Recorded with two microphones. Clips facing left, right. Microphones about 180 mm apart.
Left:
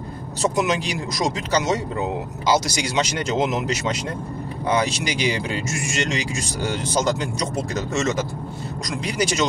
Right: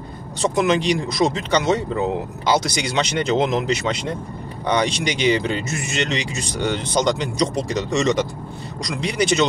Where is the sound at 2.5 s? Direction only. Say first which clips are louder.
Right 1 dB; 60° right (ahead or behind).